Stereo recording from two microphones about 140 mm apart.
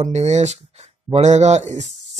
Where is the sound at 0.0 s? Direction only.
55° right (ahead or behind).